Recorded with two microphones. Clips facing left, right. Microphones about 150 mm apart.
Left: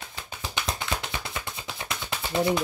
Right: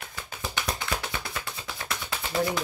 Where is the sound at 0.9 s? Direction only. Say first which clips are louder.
Even; 20° left (ahead or behind).